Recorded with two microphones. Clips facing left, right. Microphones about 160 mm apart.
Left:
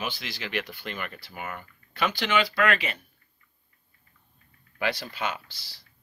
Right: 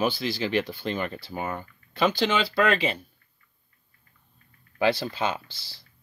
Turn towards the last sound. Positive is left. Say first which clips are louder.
# right 4 dB
turn(degrees=-25)  # may be behind; listen again after turning